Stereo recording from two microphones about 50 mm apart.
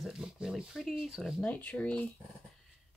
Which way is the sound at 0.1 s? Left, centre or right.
Centre.